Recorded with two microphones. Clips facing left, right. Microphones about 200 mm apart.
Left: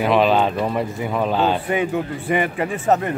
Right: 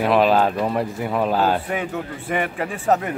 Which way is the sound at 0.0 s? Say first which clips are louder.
Even; centre (ahead or behind).